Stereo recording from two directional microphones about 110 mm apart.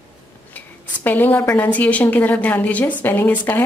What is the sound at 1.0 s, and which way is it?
Speech, 15° left (ahead or behind).